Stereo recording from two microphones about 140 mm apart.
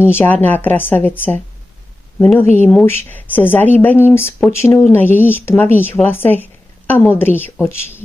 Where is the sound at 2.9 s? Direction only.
15° left (ahead or behind).